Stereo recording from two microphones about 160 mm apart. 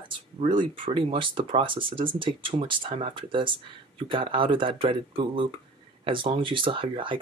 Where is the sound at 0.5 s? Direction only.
30° right (ahead or behind).